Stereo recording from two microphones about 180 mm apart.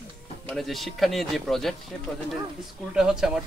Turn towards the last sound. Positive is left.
turn(degrees=-5)  # may be behind; listen again after turning